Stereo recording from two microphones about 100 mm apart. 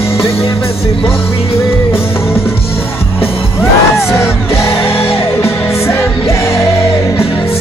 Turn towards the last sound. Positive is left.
turn(degrees=25)  # may be behind; listen again after turning